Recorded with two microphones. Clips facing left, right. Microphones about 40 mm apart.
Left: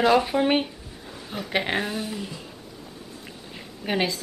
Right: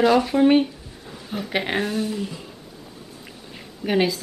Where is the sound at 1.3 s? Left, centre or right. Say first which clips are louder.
Right 1 dB; centre.